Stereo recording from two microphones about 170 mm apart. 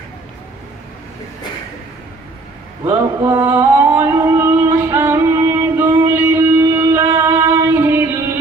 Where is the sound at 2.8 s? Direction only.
20° right (ahead or behind).